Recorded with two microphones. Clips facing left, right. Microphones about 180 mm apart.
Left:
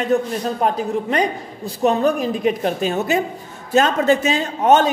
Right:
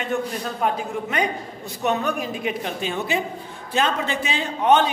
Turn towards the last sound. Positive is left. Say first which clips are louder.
# left 3 dB
turn(degrees=45)  # may be behind; listen again after turning